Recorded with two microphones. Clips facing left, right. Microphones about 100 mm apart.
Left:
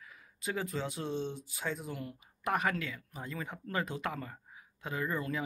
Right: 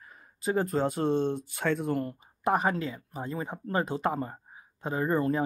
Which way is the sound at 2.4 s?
35° right (ahead or behind).